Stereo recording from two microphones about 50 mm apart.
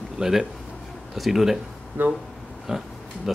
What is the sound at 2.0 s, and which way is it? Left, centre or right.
Speech, right.